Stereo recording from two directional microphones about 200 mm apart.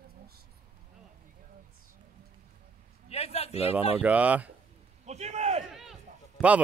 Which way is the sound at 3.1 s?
30° left (ahead or behind).